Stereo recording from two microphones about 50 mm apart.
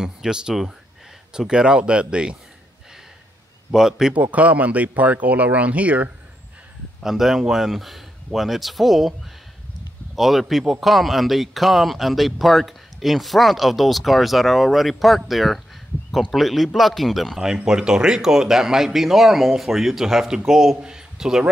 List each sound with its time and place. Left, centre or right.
0.0 s speech: centre
3.7 s speech: centre
4.1 s speech: right
7.0 s speech: centre
10.1 s speech: centre
17.6 s speech: centre